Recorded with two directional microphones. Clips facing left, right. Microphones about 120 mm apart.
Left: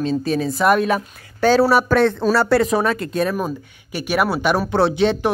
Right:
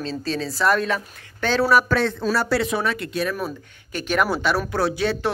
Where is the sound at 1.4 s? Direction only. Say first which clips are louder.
Left 8 dB; 40° left (ahead or behind).